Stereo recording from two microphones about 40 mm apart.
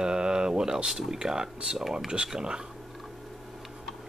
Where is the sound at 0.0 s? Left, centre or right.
Centre.